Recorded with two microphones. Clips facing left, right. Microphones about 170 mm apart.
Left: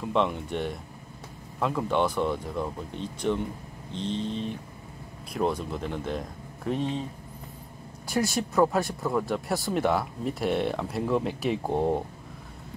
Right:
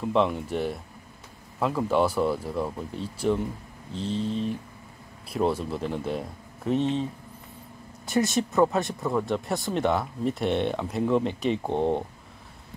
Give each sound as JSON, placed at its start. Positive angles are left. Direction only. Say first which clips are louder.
{"t": 0.1, "sound": "speech", "louder": "right 2 dB", "side_deg": 0}
{"t": 8.1, "sound": "speech", "louder": "right 3 dB", "side_deg": 0}